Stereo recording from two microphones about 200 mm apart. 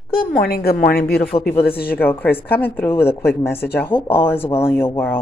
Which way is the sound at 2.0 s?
10° left (ahead or behind).